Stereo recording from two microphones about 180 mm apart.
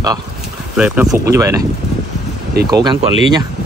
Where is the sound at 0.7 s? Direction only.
5° right (ahead or behind).